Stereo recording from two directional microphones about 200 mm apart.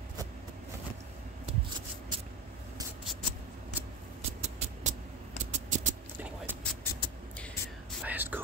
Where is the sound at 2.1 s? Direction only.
25° right (ahead or behind).